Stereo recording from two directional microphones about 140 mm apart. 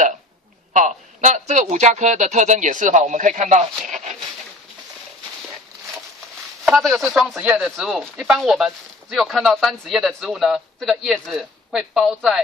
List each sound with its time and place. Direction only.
0.7 s a man's voice: 60° right (ahead or behind)
3.9 s a sound: 55° right (ahead or behind)
6.8 s speech: centre (ahead or behind)